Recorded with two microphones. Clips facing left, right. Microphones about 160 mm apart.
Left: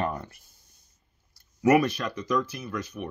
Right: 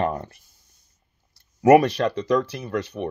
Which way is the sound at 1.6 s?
35° right (ahead or behind).